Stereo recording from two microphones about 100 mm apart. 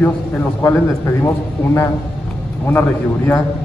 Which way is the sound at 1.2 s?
25° left (ahead or behind).